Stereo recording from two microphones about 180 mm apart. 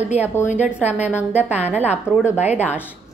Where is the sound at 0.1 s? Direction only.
40° left (ahead or behind).